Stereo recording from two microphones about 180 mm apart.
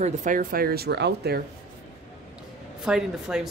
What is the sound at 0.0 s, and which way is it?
Speech, 45° right (ahead or behind).